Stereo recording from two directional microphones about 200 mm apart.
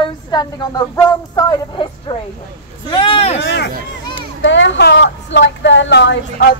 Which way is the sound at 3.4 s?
60° left (ahead or behind).